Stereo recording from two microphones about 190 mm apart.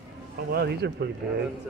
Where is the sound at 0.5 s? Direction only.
60° right (ahead or behind).